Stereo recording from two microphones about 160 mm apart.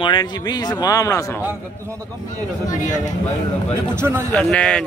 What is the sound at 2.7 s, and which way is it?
Speech, 50° left (ahead or behind).